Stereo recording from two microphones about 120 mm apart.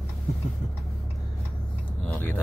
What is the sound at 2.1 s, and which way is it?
Speech, 15° left (ahead or behind).